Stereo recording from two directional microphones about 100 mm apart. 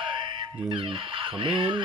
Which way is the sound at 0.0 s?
50° right (ahead or behind).